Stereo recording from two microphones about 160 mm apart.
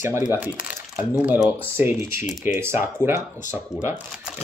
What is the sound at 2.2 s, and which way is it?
Speech, 50° left (ahead or behind).